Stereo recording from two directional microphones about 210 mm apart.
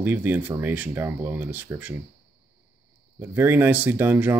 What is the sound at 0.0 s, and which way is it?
Speech, 10° right (ahead or behind).